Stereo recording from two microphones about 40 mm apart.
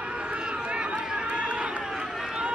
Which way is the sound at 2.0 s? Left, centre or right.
Centre.